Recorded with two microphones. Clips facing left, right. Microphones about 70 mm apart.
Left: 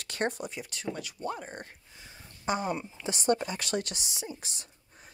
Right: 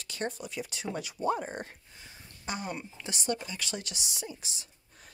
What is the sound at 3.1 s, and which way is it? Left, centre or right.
Speech, left.